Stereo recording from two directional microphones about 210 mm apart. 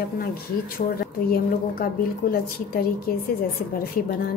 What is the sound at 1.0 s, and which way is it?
A woman's voice, 45° left (ahead or behind).